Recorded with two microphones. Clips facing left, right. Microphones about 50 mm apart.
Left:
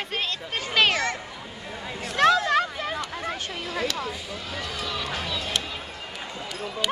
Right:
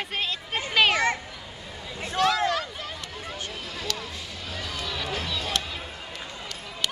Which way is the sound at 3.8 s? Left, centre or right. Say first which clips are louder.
Left 6 dB; centre.